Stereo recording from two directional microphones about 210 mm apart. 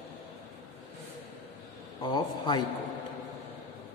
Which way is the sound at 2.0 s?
20° left (ahead or behind).